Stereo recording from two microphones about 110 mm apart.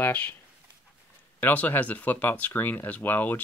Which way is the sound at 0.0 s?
15° left (ahead or behind).